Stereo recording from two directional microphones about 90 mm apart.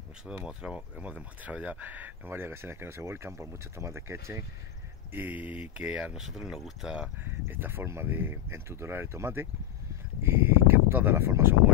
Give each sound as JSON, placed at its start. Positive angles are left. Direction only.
{"t": 0.5, "sound": "speech", "side_deg": -10}
{"t": 5.1, "sound": "speech", "side_deg": -20}
{"t": 7.2, "sound": "speech", "side_deg": -25}